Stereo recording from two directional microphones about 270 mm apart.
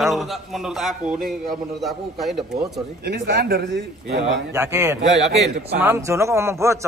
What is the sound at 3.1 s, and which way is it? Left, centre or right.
A man's voice, right.